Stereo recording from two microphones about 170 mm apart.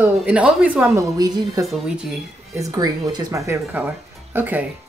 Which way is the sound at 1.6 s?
Centre (ahead or behind).